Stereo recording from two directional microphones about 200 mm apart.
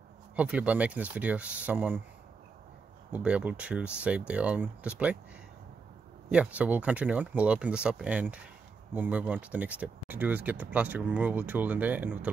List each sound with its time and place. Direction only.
0.4 s speech: 5° right (ahead or behind)
3.1 s speech: 5° right (ahead or behind)
6.3 s speech: 5° right (ahead or behind)